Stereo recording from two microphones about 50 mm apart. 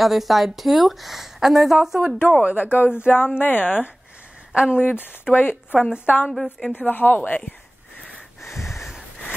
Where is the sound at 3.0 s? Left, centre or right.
Left.